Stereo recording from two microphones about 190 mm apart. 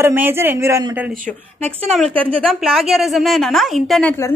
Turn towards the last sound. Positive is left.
turn(degrees=0)  # may be behind; listen again after turning